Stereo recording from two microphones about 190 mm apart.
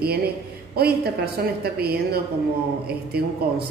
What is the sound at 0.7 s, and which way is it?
A woman's voice, 55° right (ahead or behind).